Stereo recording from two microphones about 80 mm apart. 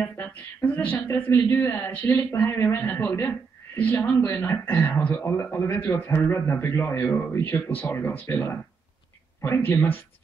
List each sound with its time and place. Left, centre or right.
0.3 s speech: centre